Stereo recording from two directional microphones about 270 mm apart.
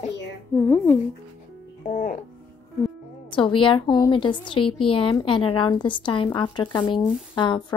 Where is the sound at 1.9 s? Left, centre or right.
Left.